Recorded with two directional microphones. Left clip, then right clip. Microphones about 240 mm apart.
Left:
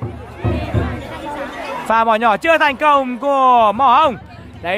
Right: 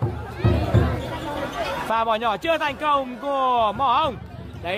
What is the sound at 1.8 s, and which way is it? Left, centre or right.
Speech, left.